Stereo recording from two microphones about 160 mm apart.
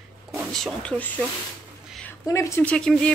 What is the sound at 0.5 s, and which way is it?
Speech, 5° left (ahead or behind).